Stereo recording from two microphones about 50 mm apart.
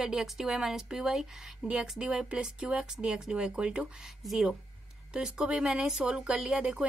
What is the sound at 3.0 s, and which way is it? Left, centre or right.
Speech, centre.